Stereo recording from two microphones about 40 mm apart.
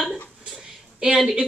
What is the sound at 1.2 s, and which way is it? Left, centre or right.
Speech, centre.